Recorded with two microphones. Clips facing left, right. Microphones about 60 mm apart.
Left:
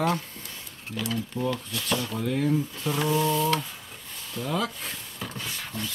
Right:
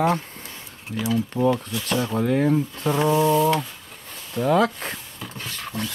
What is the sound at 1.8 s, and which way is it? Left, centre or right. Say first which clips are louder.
Speech: right 6 dB; right.